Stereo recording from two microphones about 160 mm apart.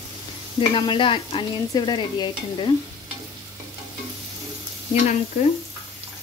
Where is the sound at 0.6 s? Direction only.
30° left (ahead or behind).